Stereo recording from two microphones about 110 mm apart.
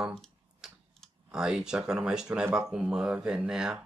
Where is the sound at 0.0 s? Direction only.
Centre (ahead or behind).